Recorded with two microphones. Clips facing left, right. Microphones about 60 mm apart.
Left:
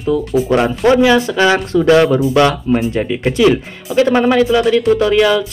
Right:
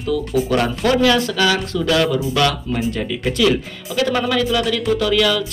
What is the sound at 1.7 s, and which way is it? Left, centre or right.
Speech, left.